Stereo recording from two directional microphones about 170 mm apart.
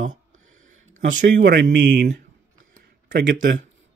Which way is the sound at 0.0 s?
45° right (ahead or behind).